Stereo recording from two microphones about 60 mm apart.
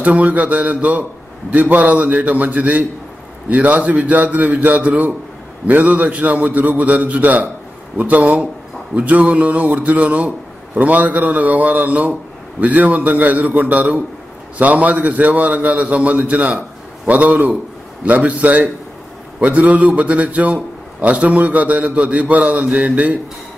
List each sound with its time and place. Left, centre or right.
0.0 s a man's voice: right